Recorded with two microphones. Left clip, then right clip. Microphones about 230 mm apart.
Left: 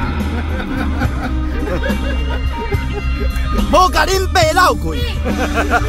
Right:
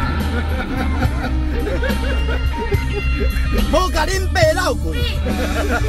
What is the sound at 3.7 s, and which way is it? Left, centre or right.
Speech, left.